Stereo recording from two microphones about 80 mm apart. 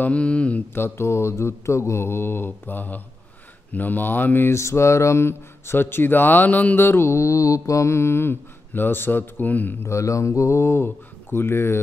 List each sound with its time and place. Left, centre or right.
0.0 s mantra: centre
0.7 s mantra: left
3.7 s speech: left
9.8 s mantra: left